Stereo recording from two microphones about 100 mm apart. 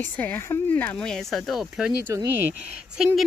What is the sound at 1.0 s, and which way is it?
Speech, 5° left (ahead or behind).